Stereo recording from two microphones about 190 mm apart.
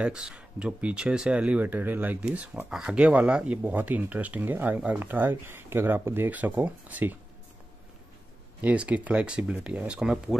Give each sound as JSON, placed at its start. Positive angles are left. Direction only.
{"t": 0.0, "sound": "speech", "side_deg": -5}
{"t": 8.5, "sound": "speech", "side_deg": -10}